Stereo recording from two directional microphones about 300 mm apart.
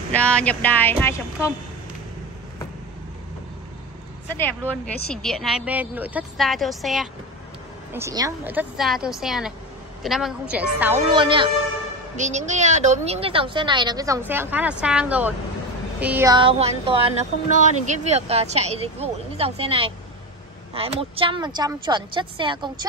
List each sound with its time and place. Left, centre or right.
0.1 s speech: centre
4.4 s speech: centre
7.9 s speech: centre